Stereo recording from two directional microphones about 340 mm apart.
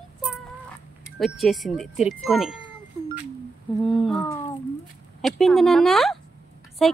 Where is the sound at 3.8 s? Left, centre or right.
Centre.